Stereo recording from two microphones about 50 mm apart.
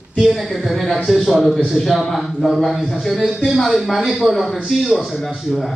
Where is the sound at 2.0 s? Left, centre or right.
Centre.